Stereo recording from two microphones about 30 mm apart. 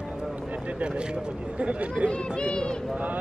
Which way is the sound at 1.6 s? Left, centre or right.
Right.